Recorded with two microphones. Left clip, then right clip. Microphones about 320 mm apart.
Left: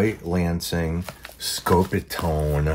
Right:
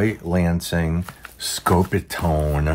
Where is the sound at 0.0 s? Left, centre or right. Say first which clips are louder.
Right 2 dB; centre.